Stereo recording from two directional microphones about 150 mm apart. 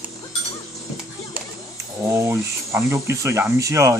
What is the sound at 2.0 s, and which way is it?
Speech, 15° right (ahead or behind).